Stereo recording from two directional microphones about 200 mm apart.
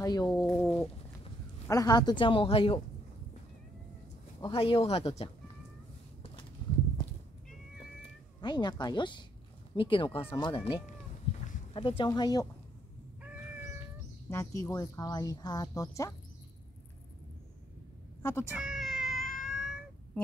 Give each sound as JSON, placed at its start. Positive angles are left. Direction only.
{"t": 0.0, "sound": "speech", "side_deg": 20}
{"t": 1.7, "sound": "speech", "side_deg": 20}
{"t": 4.4, "sound": "speech", "side_deg": 25}
{"t": 8.4, "sound": "speech", "side_deg": 20}
{"t": 11.4, "sound": "a sound", "side_deg": 30}
{"t": 12.0, "sound": "speech", "side_deg": 20}
{"t": 13.2, "sound": "cat", "side_deg": -5}
{"t": 14.3, "sound": "speech", "side_deg": 15}
{"t": 18.2, "sound": "speech", "side_deg": 10}
{"t": 18.6, "sound": "cat", "side_deg": 0}